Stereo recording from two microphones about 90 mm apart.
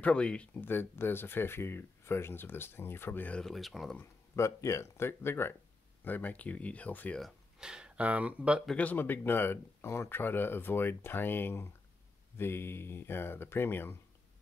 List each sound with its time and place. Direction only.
0.0 s speech: 10° left (ahead or behind)
0.6 s speech: 25° left (ahead or behind)
3.3 s speech: 5° left (ahead or behind)
4.4 s speech: 35° left (ahead or behind); by 7.2 s 15° left (ahead or behind)
7.2 s speech: 5° right (ahead or behind)
8.7 s speech: 20° left (ahead or behind)